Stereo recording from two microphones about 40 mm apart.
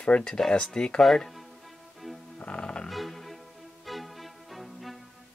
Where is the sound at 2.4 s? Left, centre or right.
Left.